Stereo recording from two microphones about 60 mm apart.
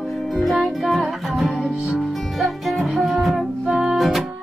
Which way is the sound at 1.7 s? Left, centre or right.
Centre.